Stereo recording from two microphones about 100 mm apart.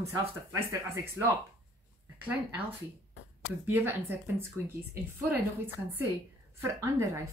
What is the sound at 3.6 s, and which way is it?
Speech, 20° right (ahead or behind).